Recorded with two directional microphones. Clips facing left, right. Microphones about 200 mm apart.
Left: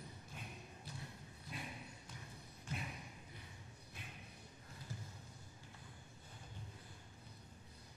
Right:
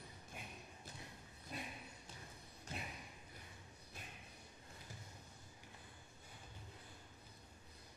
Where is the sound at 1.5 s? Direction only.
40° right (ahead or behind).